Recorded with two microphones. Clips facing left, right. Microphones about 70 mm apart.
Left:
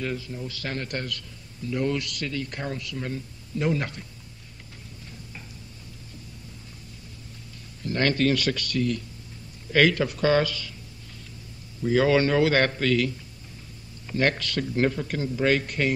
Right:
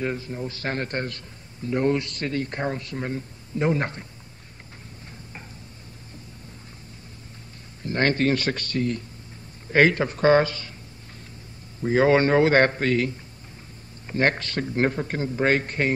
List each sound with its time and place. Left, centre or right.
0.0 s a man's voice: right
7.8 s a man's voice: right
11.8 s a man's voice: right